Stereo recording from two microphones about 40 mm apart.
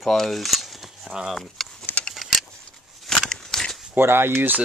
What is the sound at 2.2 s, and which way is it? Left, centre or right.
Vehicle, centre.